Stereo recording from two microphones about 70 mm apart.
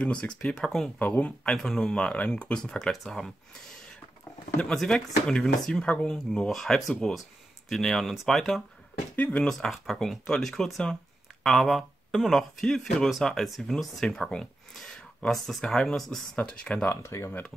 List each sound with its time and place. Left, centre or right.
0.0 s speech: centre
0.9 s speech: left
1.5 s speech: centre
4.6 s speech: centre
9.1 s speech: left
9.4 s speech: centre
16.3 s speech: centre
16.8 s speech: left